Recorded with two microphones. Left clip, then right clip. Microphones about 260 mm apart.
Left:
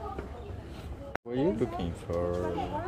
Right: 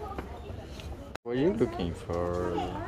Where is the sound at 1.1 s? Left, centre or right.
Centre.